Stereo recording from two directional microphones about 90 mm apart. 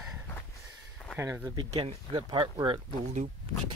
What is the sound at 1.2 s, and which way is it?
Speech, 30° right (ahead or behind).